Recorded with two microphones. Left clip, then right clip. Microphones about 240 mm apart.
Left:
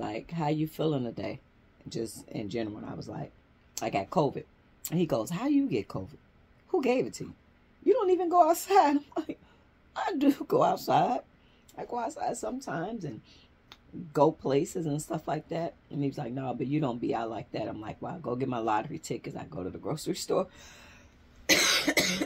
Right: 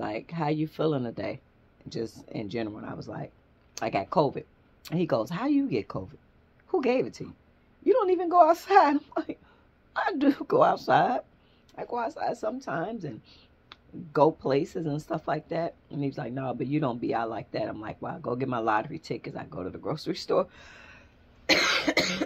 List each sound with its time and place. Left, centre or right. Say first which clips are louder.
0.0 s speech: right 2 dB; centre
21.5 s cough: right 1 dB; centre